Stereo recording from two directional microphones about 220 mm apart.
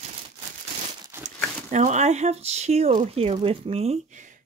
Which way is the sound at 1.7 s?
35° right (ahead or behind).